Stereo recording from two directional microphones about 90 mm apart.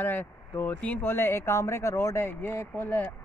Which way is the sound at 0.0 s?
20° left (ahead or behind).